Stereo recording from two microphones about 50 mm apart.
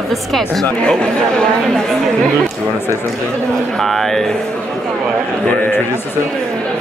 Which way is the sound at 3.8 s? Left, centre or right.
Centre.